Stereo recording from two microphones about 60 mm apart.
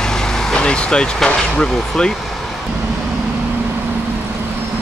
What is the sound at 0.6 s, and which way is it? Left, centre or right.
Speech, centre.